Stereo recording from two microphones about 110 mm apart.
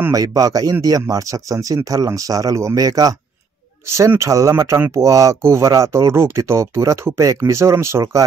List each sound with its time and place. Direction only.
0.1 s speech: 35° right (ahead or behind)